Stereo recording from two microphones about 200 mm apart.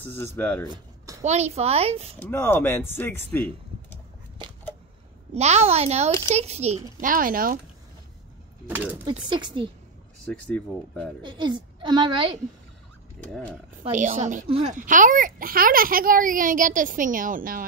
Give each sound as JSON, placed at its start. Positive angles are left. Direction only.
{"t": 0.0, "sound": "speech", "side_deg": 10}
{"t": 1.2, "sound": "a child's voice", "side_deg": -35}
{"t": 2.1, "sound": "speech", "side_deg": 10}
{"t": 4.4, "sound": "a sound", "side_deg": -25}
{"t": 5.3, "sound": "a child's voice", "side_deg": -35}
{"t": 8.6, "sound": "speech", "side_deg": -10}
{"t": 9.3, "sound": "a woman's voice", "side_deg": -20}
{"t": 10.4, "sound": "speech", "side_deg": 5}
{"t": 11.2, "sound": "a woman's voice", "side_deg": -25}
{"t": 13.2, "sound": "speech", "side_deg": 5}
{"t": 13.8, "sound": "a child's voice", "side_deg": -40}